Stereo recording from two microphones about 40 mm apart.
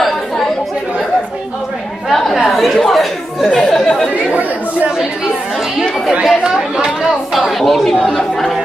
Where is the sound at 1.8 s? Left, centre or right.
Centre.